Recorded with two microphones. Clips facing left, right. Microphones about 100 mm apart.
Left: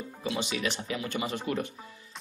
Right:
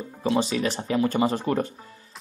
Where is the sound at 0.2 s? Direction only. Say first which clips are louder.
Right 8 dB; 35° right (ahead or behind).